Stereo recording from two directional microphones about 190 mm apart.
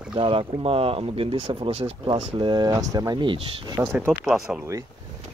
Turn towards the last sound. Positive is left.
turn(degrees=-15)  # may be behind; listen again after turning